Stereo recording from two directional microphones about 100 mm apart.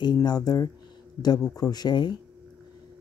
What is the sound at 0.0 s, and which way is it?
Speech, 45° left (ahead or behind).